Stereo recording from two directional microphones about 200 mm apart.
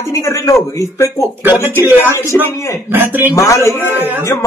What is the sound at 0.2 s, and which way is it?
Speech, 15° left (ahead or behind).